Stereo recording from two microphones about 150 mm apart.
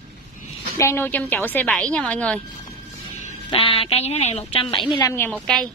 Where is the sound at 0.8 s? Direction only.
15° left (ahead or behind).